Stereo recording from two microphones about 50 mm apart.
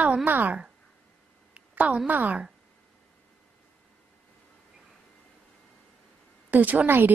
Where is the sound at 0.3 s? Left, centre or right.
Right.